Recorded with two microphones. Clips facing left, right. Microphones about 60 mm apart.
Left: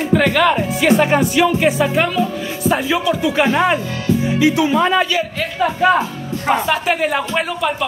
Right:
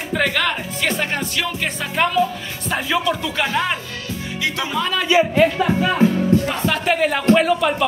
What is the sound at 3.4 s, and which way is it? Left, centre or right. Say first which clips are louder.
Speech: left 6 dB; centre.